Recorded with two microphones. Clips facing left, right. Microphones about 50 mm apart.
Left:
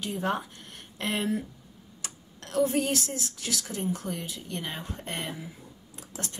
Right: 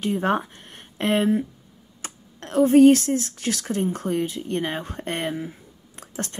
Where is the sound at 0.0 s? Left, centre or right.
Right.